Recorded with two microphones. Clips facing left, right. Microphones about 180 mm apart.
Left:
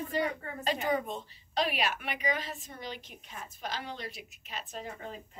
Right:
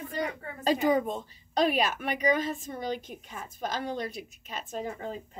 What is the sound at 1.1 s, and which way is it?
A woman's voice, 45° right (ahead or behind).